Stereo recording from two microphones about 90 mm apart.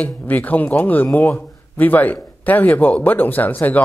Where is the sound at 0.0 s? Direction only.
20° left (ahead or behind).